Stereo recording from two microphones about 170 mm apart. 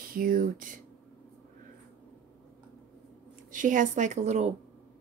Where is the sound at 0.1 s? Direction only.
55° right (ahead or behind).